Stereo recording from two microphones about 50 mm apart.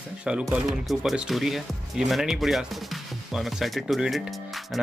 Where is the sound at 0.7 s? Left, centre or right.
Centre.